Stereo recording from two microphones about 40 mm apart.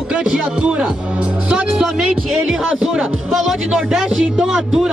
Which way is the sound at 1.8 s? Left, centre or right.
Centre.